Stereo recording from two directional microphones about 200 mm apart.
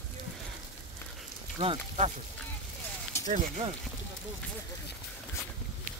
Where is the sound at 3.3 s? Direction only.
40° right (ahead or behind).